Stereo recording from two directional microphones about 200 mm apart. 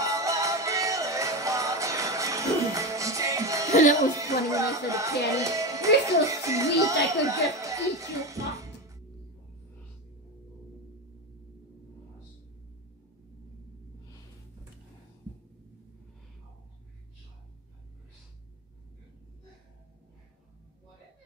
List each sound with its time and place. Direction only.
0.0 s music: 15° right (ahead or behind)
3.9 s speech: 15° right (ahead or behind)